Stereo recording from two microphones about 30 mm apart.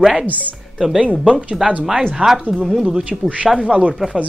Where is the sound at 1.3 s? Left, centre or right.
Right.